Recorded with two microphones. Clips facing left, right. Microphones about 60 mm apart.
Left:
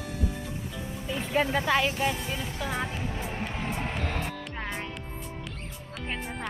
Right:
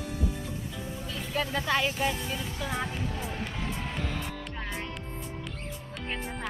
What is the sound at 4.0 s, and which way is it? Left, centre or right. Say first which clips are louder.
Music: left 2 dB; left.